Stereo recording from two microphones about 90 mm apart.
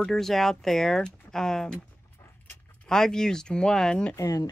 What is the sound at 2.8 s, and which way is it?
Speech, 5° left (ahead or behind).